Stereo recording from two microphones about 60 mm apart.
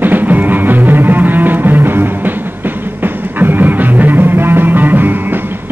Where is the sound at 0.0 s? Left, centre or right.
Right.